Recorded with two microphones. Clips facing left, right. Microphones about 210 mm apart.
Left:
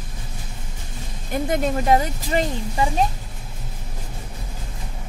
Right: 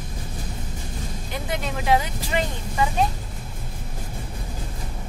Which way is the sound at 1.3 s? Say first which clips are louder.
Left 8 dB; 45° left (ahead or behind).